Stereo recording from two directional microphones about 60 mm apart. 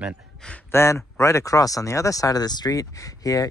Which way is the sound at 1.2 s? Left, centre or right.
Left.